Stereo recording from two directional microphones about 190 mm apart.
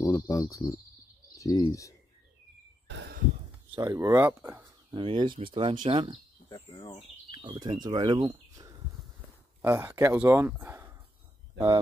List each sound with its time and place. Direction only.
0.0 s speech: 20° left (ahead or behind)
2.9 s a sound: 70° right (ahead or behind)
3.7 s speech: 20° right (ahead or behind)
4.9 s speech: 25° right (ahead or behind)
6.5 s speech: 20° left (ahead or behind)
7.2 s speech: 25° right (ahead or behind)
8.3 s bird: 15° right (ahead or behind)
9.6 s speech: 10° right (ahead or behind)